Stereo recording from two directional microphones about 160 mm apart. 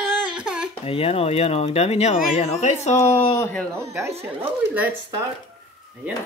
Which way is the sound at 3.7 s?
15° right (ahead or behind).